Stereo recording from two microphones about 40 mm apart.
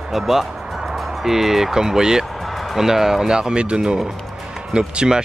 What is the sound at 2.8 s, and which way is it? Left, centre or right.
Speech, centre.